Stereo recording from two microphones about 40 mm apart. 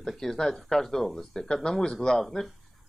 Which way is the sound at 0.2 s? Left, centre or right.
Centre.